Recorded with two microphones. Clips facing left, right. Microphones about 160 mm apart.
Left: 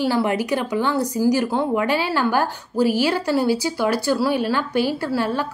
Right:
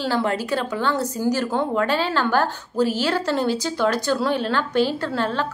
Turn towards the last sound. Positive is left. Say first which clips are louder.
# left 2 dB
turn(degrees=10)  # may be behind; listen again after turning